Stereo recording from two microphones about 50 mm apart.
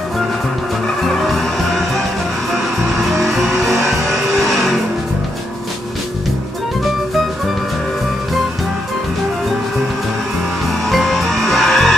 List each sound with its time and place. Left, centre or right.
1.0 s music: centre
3.0 s music: centre
10.9 s music: centre